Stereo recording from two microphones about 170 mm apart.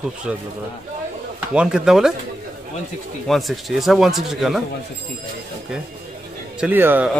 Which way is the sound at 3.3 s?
Centre (ahead or behind).